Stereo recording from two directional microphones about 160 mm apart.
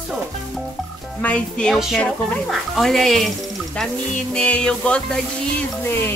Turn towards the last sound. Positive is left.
turn(degrees=15)  # may be behind; listen again after turning